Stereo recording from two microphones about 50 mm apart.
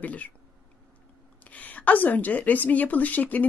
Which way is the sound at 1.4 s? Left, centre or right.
Left.